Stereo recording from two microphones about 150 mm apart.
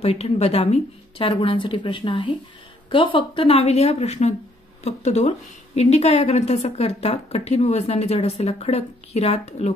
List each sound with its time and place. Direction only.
0.0 s a woman's voice: 40° left (ahead or behind)